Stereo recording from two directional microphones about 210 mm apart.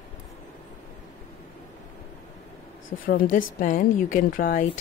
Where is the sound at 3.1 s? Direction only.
45° left (ahead or behind).